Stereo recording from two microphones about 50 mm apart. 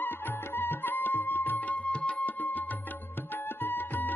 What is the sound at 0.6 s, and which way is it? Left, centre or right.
Music, left.